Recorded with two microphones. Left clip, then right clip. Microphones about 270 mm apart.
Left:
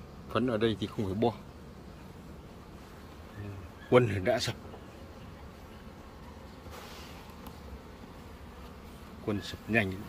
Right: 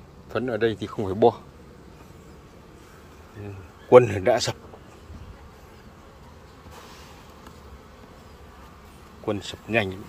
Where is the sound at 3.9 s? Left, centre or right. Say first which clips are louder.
Right 10 dB; centre.